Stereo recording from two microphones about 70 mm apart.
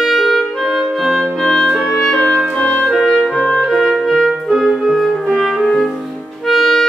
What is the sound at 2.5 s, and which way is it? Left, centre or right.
Clarinet, centre.